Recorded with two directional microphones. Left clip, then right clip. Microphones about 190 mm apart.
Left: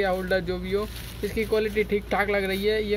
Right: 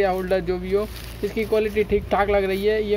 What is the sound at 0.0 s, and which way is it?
Speech, 35° right (ahead or behind).